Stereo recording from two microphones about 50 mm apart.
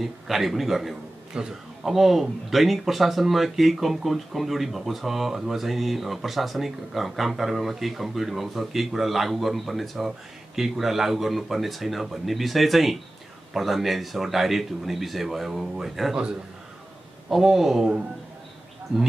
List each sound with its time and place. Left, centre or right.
0.0 s speech: centre
1.3 s a man's voice: right
1.9 s speech: centre
17.3 s speech: centre
18.9 s speech: centre